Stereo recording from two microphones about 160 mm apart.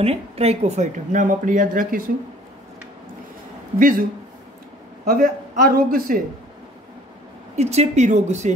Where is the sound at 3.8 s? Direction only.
60° right (ahead or behind).